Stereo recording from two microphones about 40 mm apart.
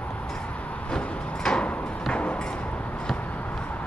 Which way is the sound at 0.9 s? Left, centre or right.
Left.